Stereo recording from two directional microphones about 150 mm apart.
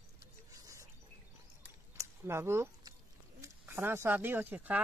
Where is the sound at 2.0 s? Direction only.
15° right (ahead or behind).